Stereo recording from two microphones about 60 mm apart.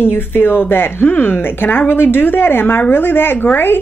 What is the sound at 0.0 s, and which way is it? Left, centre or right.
A woman's voice, left.